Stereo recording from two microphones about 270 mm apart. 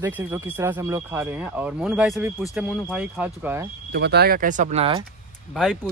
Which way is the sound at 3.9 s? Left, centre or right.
Right.